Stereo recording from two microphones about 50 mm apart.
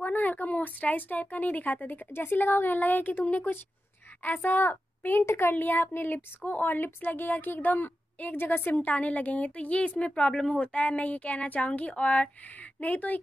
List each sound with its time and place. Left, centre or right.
0.0 s a woman's voice: left
5.2 s speech: left
5.5 s a woman's voice: left